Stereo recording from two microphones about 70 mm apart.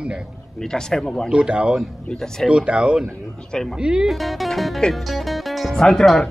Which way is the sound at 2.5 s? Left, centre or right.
Centre.